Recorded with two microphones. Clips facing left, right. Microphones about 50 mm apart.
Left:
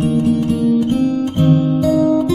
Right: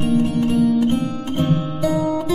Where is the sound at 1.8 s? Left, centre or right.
Centre.